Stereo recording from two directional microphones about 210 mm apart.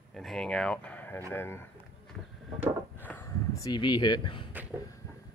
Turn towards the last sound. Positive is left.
turn(degrees=20)  # may be behind; listen again after turning